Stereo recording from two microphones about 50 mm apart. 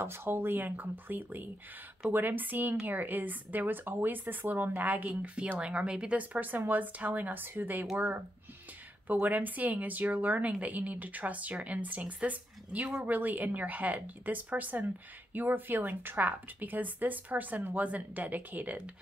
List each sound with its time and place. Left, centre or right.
0.0 s a woman's voice: right
9.2 s a woman's voice: right